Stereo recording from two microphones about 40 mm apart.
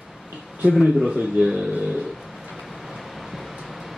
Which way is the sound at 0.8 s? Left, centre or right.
Centre.